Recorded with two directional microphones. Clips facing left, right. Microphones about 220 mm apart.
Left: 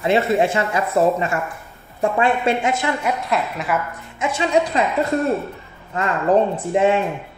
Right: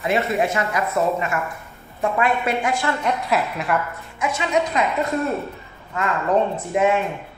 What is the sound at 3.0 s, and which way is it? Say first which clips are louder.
Speech: even; centre (ahead or behind).